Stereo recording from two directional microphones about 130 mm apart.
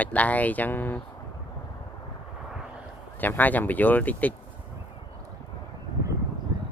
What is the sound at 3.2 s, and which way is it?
Speech, 15° left (ahead or behind).